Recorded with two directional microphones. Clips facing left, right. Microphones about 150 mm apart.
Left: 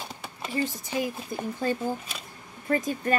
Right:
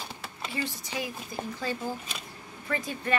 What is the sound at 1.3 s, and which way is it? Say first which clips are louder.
Speech: left 3 dB; 55° left (ahead or behind).